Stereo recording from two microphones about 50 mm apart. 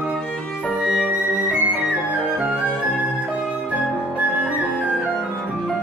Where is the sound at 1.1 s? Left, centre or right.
Right.